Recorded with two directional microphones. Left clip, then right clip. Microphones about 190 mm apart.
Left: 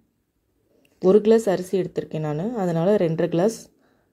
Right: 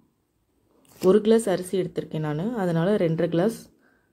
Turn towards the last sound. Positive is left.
turn(degrees=15)  # may be behind; listen again after turning